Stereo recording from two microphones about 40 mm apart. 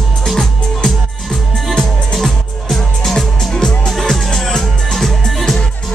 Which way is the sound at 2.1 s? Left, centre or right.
Centre.